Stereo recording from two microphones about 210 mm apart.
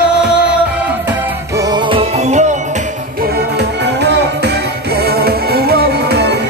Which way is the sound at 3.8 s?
55° right (ahead or behind).